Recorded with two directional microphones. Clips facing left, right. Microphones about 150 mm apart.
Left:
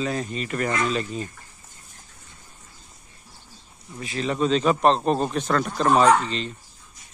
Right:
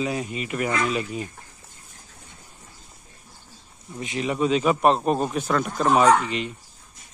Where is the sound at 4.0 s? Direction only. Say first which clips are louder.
Even; 20° right (ahead or behind).